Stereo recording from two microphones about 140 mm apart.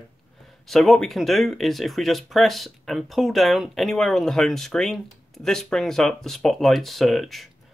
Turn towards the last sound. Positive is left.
turn(degrees=0)  # may be behind; listen again after turning